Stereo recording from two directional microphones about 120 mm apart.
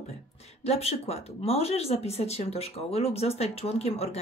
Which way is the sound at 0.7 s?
60° left (ahead or behind).